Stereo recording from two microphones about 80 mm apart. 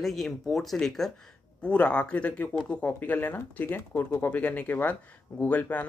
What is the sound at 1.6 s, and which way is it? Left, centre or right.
Speech, centre.